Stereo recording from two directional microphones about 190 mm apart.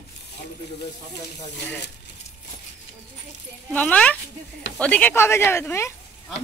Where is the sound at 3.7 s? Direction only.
5° left (ahead or behind).